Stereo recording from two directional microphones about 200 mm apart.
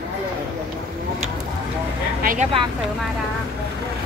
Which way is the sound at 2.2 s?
40° right (ahead or behind).